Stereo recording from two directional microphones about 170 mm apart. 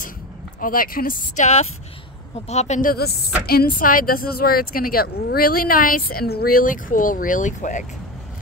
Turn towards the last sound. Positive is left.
turn(degrees=50)  # may be behind; listen again after turning